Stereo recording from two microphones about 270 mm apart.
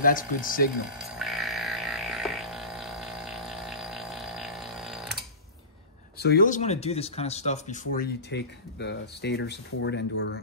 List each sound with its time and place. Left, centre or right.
0.0 s speech: left
1.1 s music: centre
6.1 s speech: left